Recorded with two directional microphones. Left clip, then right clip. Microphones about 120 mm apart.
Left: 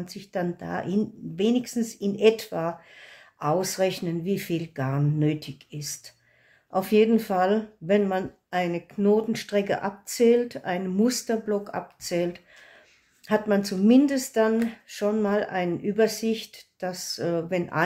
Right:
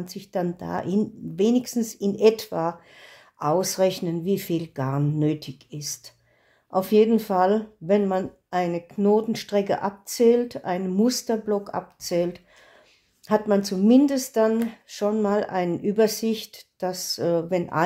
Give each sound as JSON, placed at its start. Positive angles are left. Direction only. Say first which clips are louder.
{"t": 0.0, "sound": "speech", "louder": "right 2 dB", "side_deg": -50}